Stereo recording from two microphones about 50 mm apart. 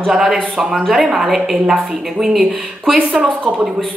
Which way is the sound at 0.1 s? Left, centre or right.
Centre.